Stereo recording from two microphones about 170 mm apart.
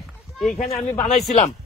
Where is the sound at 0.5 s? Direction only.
35° left (ahead or behind).